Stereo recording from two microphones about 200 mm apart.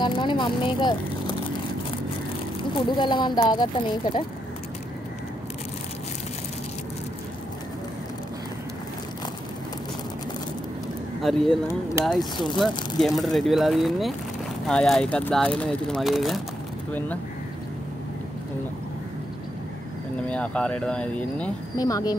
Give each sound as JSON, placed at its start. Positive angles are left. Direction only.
{"t": 0.0, "sound": "speech", "side_deg": 25}
{"t": 2.7, "sound": "speech", "side_deg": 25}
{"t": 11.1, "sound": "speech", "side_deg": 0}
{"t": 20.2, "sound": "speech", "side_deg": 5}
{"t": 21.7, "sound": "speech", "side_deg": 20}